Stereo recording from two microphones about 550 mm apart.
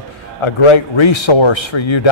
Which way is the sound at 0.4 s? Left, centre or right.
Left.